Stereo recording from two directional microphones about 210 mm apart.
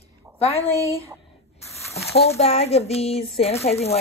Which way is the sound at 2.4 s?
30° left (ahead or behind).